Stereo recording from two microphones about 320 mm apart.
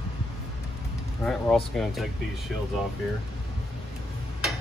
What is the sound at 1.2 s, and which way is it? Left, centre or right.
Speech, centre.